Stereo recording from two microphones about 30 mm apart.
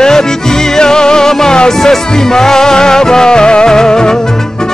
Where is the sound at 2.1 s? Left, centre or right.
Centre.